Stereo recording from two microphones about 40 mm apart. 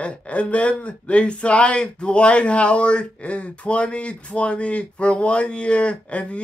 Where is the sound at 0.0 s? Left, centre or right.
Left.